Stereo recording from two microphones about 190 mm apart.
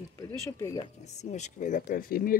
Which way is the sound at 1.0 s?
35° left (ahead or behind).